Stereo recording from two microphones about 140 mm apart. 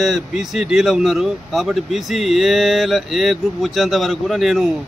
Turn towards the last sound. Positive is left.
turn(degrees=0)  # may be behind; listen again after turning